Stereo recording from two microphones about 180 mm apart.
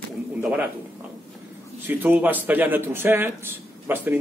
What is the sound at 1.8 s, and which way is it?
A man's voice, 10° right (ahead or behind).